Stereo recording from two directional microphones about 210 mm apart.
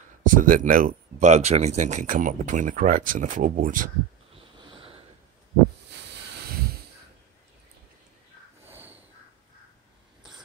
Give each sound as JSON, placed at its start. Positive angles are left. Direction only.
{"t": 0.2, "sound": "speech", "side_deg": -40}
{"t": 4.6, "sound": "sniff", "side_deg": -25}
{"t": 8.6, "sound": "crow", "side_deg": -10}